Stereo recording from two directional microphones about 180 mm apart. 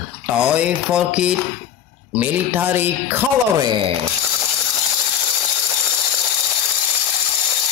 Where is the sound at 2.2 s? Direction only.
10° right (ahead or behind).